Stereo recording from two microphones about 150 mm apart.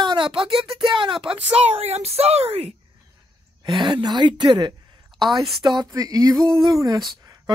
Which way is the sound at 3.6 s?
30° right (ahead or behind).